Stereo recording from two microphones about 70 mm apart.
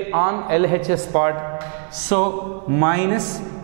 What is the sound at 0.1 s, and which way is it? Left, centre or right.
A man's voice, centre.